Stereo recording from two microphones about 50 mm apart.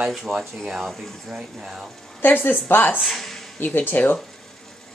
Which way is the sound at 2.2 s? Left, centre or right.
Left.